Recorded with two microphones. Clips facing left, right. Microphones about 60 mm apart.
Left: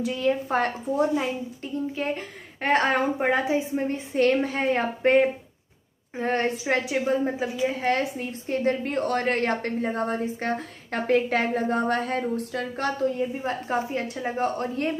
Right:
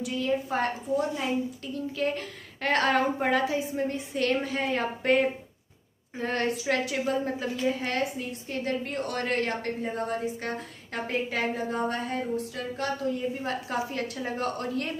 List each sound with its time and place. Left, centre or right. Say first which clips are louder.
0.0 s a woman's voice: left 4 dB; left
1.1 s a woman's voice: left 2 dB; left
4.1 s a woman's voice: left 8 dB; left
7.6 s a woman's voice: left 4 dB; left
13.4 s a woman's voice: left 3 dB; left